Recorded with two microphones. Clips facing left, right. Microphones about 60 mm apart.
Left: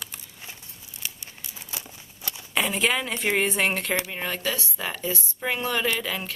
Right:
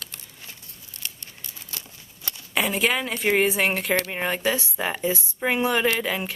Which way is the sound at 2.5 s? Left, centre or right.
Centre.